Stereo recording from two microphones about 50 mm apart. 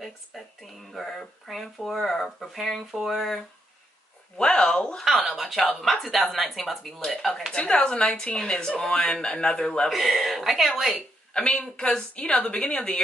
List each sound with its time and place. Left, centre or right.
0.0 s speech: centre
4.4 s speech: centre
5.0 s speech: centre
7.5 s a woman's voice: centre
9.8 s speech: centre
11.3 s a woman's voice: centre